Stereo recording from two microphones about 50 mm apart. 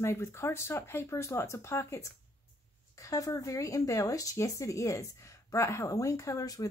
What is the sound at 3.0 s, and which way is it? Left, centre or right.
Speech, left.